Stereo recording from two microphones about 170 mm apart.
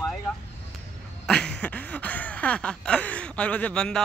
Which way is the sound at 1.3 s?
5° left (ahead or behind).